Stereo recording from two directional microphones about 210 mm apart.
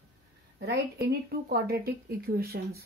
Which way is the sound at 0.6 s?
50° right (ahead or behind).